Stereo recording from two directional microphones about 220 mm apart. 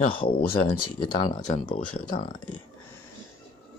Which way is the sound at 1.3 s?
35° left (ahead or behind).